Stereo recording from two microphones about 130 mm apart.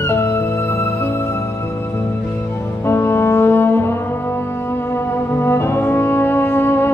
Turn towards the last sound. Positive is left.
turn(degrees=15)  # may be behind; listen again after turning